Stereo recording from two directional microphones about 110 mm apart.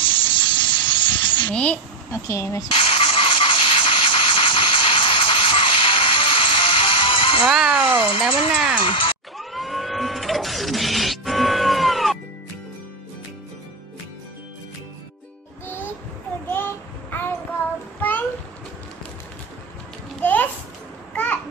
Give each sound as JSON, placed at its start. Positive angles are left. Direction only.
{"t": 0.0, "sound": "hiss", "side_deg": 50}
{"t": 1.5, "sound": "speech", "side_deg": 10}
{"t": 2.0, "sound": "speech", "side_deg": 25}
{"t": 2.7, "sound": "music", "side_deg": 55}
{"t": 7.4, "sound": "a sound", "side_deg": -5}
{"t": 7.8, "sound": "speech", "side_deg": 50}
{"t": 9.4, "sound": "a sound", "side_deg": 0}
{"t": 15.6, "sound": "music", "side_deg": 20}
{"t": 16.4, "sound": "child singing", "side_deg": 20}
{"t": 20.2, "sound": "a sound", "side_deg": 15}
{"t": 21.1, "sound": "babbling", "side_deg": 15}